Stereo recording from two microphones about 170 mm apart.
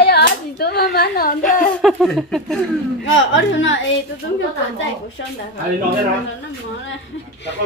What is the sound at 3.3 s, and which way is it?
Speech, 90° left.